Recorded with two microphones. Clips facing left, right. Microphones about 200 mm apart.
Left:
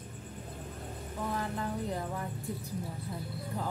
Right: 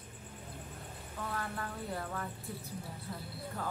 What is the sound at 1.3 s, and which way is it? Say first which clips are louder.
Speech: left 5 dB; 15° left (ahead or behind).